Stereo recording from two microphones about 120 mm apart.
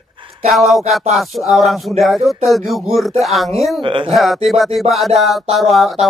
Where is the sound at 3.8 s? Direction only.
45° right (ahead or behind).